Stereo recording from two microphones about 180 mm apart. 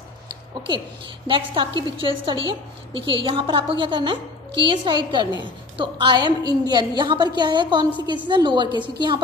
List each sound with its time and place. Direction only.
0.7 s a woman's voice: 25° right (ahead or behind)